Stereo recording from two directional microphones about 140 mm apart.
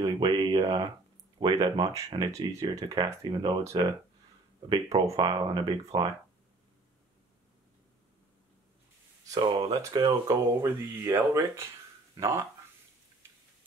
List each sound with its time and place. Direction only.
0.0 s speech: 30° right (ahead or behind)
9.3 s speech: 35° right (ahead or behind)
9.8 s speech: 25° right (ahead or behind)